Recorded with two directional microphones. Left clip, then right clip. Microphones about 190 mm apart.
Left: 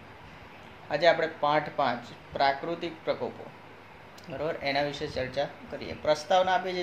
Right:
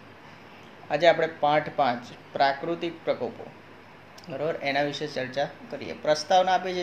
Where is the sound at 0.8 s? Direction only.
10° right (ahead or behind).